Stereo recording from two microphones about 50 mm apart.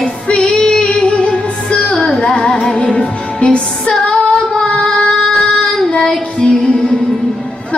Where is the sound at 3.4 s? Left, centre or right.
Left.